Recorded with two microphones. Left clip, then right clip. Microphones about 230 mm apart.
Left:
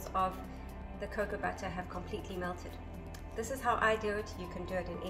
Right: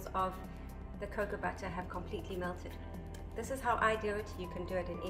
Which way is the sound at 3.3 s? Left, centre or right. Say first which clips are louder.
Left 1 dB; centre.